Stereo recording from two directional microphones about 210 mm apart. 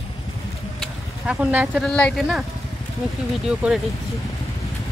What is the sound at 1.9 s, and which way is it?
Speech, 5° left (ahead or behind).